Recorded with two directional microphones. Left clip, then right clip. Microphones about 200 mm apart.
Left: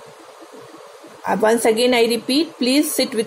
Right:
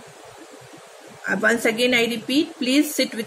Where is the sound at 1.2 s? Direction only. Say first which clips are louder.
Left 4 dB; 20° left (ahead or behind).